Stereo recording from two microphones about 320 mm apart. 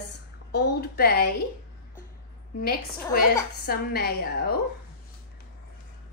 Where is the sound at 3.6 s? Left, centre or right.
Left.